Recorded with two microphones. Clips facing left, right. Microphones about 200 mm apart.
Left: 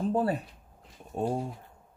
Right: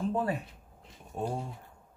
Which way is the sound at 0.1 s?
35° left (ahead or behind).